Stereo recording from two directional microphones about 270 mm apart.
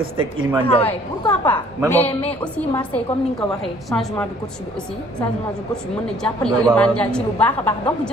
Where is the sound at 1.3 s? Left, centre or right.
Centre.